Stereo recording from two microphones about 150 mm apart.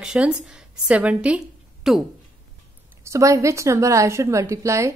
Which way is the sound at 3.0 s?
20° right (ahead or behind).